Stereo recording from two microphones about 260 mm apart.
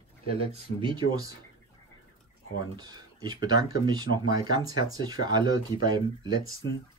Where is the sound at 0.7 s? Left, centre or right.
Centre.